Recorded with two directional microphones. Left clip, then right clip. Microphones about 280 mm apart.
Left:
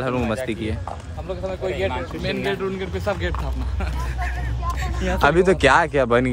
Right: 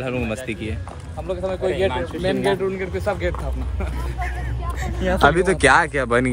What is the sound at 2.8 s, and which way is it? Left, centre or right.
Speech, centre.